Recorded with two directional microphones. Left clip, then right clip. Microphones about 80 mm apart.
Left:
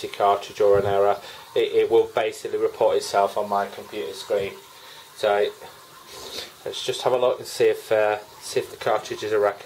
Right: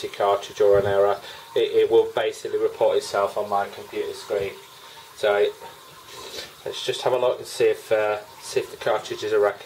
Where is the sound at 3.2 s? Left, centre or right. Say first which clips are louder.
Left 1 dB; left.